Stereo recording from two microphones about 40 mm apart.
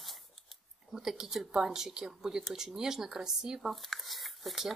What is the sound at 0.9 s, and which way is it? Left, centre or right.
Speech, centre.